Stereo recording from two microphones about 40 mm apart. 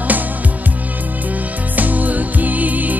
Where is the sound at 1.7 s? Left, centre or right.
Right.